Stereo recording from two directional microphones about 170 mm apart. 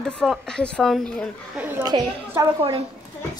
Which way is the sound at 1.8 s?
25° right (ahead or behind).